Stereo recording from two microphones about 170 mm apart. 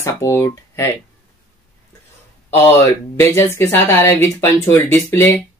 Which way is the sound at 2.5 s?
15° left (ahead or behind).